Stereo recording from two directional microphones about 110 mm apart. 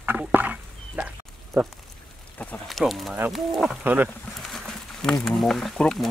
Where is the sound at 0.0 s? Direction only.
15° right (ahead or behind).